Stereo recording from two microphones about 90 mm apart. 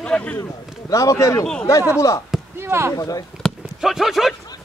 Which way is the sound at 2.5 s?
30° right (ahead or behind).